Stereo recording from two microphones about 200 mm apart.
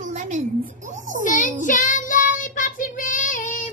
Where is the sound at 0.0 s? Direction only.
40° right (ahead or behind).